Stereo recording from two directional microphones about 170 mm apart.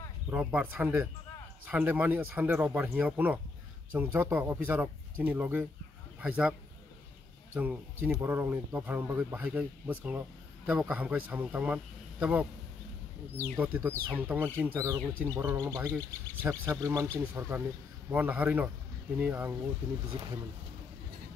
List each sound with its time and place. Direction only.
0.3 s speech: 10° right (ahead or behind)
7.5 s speech: 10° right (ahead or behind)
13.6 s speech: 10° right (ahead or behind)
15.9 s speech: 10° left (ahead or behind)
16.4 s speech: 15° right (ahead or behind)